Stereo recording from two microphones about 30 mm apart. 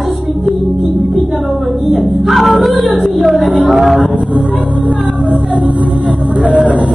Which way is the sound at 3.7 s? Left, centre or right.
Centre.